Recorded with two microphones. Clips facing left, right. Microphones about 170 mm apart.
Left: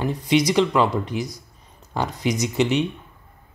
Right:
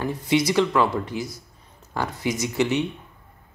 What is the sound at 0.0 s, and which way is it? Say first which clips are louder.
Speech: left 2 dB; 20° left (ahead or behind).